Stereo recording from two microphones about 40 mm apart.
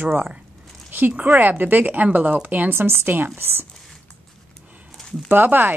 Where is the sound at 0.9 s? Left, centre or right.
Right.